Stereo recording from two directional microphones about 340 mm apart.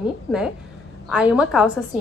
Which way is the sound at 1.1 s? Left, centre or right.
Centre.